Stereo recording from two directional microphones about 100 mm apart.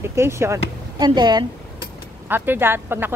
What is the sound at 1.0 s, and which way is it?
Speech, 45° right (ahead or behind).